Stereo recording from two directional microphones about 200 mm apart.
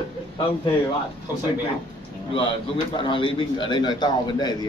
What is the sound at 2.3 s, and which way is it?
A man's voice, 25° left (ahead or behind).